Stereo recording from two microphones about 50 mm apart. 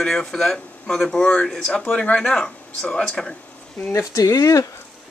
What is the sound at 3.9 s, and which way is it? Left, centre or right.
Speech, left.